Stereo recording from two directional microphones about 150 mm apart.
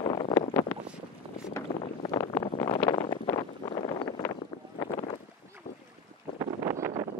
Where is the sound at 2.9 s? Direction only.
30° left (ahead or behind).